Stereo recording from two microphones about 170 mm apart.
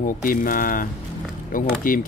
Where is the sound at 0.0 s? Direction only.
55° left (ahead or behind).